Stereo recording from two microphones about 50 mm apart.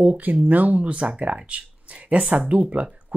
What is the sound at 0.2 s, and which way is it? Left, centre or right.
Speech, right.